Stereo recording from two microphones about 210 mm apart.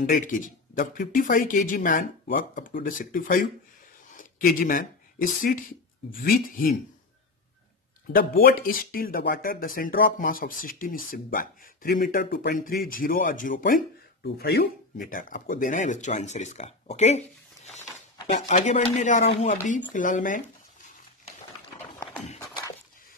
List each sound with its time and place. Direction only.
0.0 s speech: 40° left (ahead or behind)
8.1 s speech: 45° left (ahead or behind)
18.2 s speech: 35° left (ahead or behind)